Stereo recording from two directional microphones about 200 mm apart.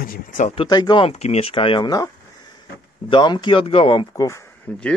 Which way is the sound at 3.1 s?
20° left (ahead or behind).